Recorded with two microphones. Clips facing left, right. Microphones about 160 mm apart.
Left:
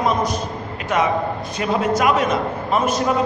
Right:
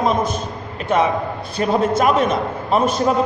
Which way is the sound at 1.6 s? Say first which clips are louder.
Right 3 dB; 30° right (ahead or behind).